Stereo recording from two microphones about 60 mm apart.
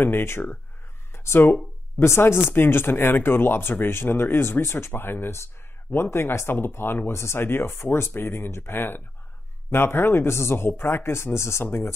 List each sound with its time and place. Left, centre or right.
0.0 s speech: left